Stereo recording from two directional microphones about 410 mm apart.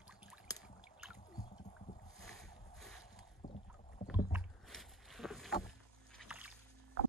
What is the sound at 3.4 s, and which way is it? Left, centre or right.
Rowboat, centre.